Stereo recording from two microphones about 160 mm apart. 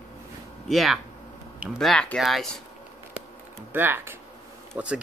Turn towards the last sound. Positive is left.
turn(degrees=-5)  # may be behind; listen again after turning